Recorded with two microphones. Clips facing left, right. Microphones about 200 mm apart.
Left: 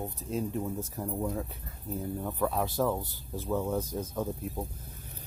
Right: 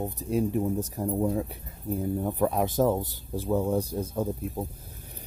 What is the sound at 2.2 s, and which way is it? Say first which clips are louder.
Speech: right 4 dB; 20° right (ahead or behind).